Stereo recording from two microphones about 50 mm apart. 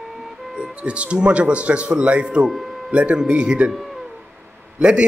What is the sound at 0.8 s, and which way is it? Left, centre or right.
Speech, right.